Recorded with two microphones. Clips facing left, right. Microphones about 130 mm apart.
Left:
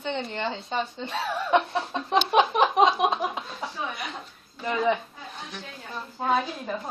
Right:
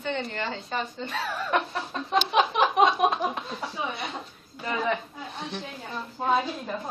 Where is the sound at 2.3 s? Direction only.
Centre (ahead or behind).